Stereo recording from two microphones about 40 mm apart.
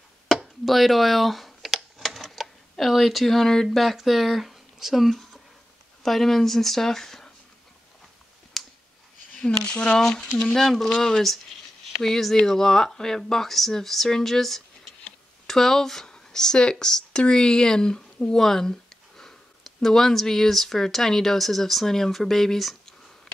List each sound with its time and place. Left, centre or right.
0.3 s computer keyboard: centre
3.7 s speech: centre
8.6 s clicking: centre
9.7 s speech: left
9.9 s speech: centre